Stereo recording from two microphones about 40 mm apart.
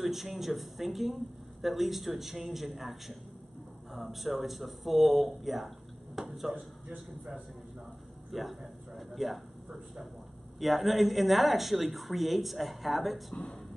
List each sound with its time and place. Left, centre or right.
0.0 s a woman's voice: centre
6.5 s a man's voice: right
8.3 s a woman's voice: centre
10.6 s a woman's voice: centre